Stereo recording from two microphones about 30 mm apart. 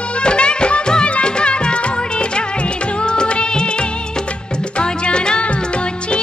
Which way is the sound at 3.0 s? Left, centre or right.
Left.